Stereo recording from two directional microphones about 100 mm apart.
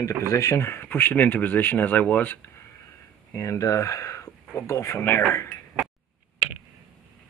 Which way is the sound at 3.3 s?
30° left (ahead or behind).